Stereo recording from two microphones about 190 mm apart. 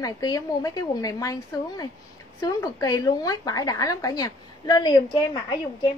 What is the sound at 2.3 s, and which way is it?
A woman's voice, 15° left (ahead or behind).